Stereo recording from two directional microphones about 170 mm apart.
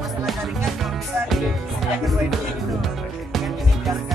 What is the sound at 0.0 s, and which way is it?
Music, centre (ahead or behind).